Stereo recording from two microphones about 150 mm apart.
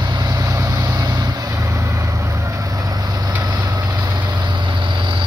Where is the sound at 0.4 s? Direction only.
20° right (ahead or behind).